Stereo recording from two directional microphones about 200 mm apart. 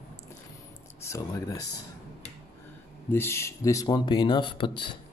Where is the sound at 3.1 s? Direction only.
10° left (ahead or behind).